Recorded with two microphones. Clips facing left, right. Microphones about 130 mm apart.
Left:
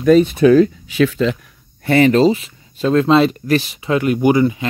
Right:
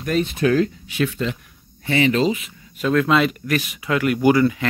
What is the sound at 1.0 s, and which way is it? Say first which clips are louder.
Speech: left 7 dB; 90° left.